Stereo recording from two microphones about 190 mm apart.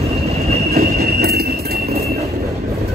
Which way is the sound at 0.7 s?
55° right (ahead or behind).